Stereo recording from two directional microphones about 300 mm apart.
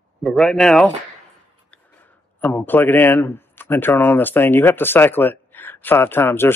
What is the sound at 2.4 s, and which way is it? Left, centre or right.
Speech, centre.